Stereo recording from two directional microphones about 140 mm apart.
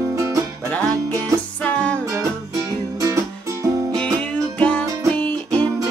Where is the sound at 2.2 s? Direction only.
20° right (ahead or behind).